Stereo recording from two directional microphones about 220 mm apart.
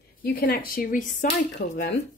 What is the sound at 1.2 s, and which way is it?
Speech, 50° left (ahead or behind).